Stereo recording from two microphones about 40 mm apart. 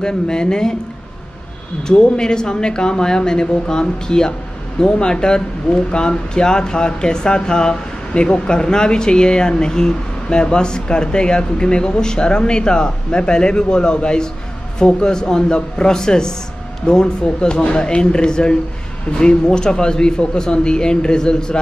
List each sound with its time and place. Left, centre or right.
0.0 s speech: left
1.9 s a man's voice: left